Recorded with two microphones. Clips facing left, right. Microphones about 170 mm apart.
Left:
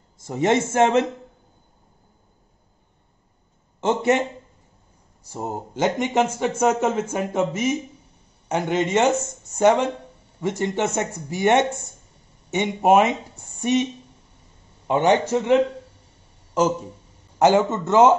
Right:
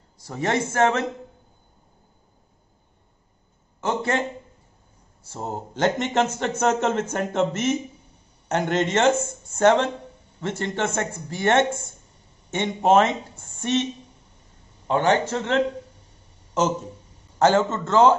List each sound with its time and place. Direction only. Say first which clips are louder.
0.3 s a man's voice: left 5 dB; 20° left (ahead or behind)
3.8 s speech: left 5 dB; 20° left (ahead or behind)
5.4 s speech: even; 5° left (ahead or behind)
14.9 s speech: left 2 dB; 15° left (ahead or behind)
17.4 s speech: left 2 dB; 15° left (ahead or behind)